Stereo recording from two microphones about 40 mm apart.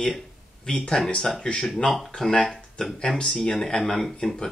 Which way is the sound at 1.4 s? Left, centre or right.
Left.